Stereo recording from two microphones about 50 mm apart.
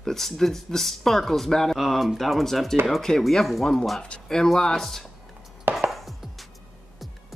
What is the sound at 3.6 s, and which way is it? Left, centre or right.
Speech, centre.